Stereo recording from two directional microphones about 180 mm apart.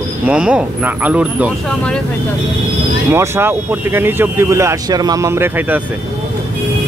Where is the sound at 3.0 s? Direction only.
15° right (ahead or behind).